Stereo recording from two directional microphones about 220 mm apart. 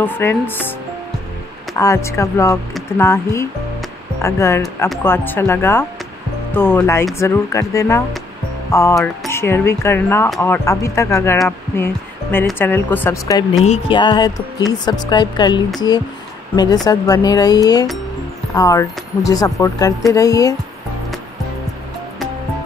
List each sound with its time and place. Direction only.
0.0 s speech: 10° left (ahead or behind)
1.8 s speech: 15° left (ahead or behind)
8.9 s speech: centre (ahead or behind)
9.3 s a woman's voice: 10° left (ahead or behind)